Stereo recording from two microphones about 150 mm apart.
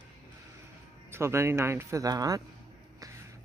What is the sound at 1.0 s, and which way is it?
Speech, 15° right (ahead or behind).